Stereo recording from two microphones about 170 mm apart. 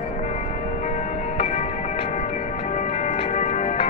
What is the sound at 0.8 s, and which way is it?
Music, 40° left (ahead or behind).